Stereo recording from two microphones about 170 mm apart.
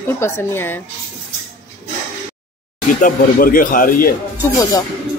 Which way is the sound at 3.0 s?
55° left (ahead or behind).